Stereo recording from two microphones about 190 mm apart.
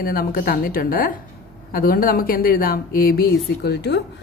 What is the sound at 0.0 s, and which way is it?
Speech, 50° left (ahead or behind).